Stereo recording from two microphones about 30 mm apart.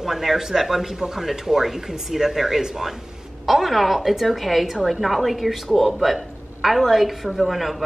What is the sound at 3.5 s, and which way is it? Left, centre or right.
A woman's voice, centre.